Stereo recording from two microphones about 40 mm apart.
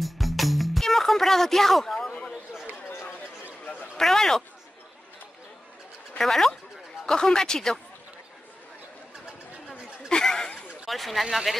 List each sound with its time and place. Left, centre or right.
0.0 s music: centre
3.9 s speech: centre
6.1 s speech: centre
9.7 s a sound: centre
10.9 s speech: centre